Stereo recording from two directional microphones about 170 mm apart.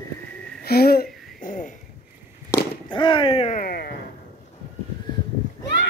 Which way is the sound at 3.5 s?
65° left (ahead or behind).